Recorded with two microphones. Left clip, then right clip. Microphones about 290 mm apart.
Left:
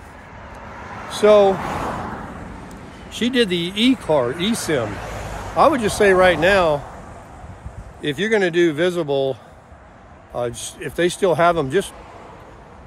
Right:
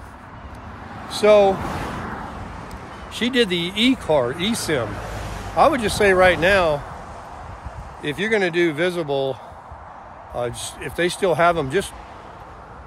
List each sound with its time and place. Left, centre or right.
1.2 s speech: centre
1.9 s a sound: centre
3.1 s speech: centre
4.8 s speech: left
5.6 s speech: centre
8.0 s speech: centre